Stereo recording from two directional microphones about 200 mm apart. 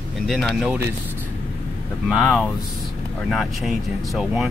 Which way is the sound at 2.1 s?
Centre (ahead or behind).